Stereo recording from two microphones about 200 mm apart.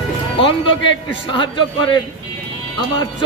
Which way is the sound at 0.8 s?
25° left (ahead or behind).